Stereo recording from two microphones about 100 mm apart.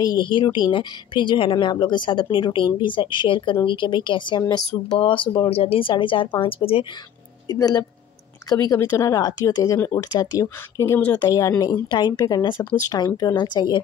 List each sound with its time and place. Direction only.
0.0 s a woman's voice: 50° left (ahead or behind)
4.4 s speech: 45° left (ahead or behind)
4.9 s a woman's voice: 55° left (ahead or behind)
5.5 s a woman's voice: 75° left (ahead or behind); by 6.2 s 55° left (ahead or behind)
6.4 s speech: 65° left (ahead or behind)
7.4 s speech: 40° left (ahead or behind)